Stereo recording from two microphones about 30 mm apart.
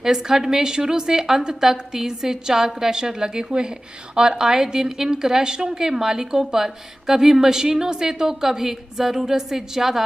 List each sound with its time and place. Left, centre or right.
0.0 s a woman's voice: centre